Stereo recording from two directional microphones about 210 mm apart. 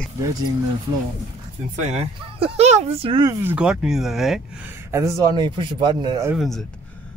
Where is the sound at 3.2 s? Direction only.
10° right (ahead or behind).